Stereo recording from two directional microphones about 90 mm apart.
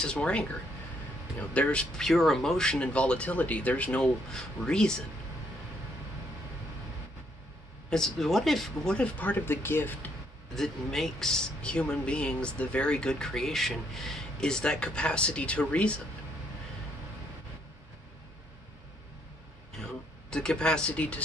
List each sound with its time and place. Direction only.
0.0 s speech: 10° left (ahead or behind)
1.5 s speech: 15° left (ahead or behind)
7.9 s speech: 5° left (ahead or behind); by 10.1 s 25° left (ahead or behind)
10.5 s speech: 5° left (ahead or behind)
19.7 s a sound: 5° left (ahead or behind)